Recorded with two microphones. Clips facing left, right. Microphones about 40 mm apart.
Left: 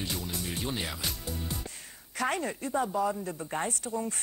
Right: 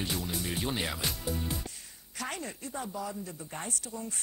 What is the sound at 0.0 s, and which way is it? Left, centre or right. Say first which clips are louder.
Speech: right 1 dB; centre.